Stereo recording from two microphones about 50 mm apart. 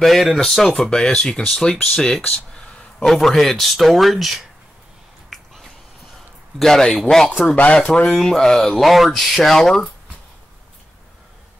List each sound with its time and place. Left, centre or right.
0.0 s speech: centre
2.2 s a sound: left
3.1 s speech: centre
6.6 s speech: centre
7.5 s speech: left
8.1 s speech: centre